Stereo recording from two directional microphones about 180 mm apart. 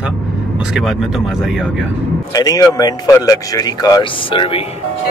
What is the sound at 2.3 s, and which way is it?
Speech, 20° left (ahead or behind).